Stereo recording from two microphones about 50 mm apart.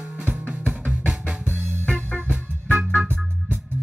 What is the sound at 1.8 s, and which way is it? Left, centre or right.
Music, left.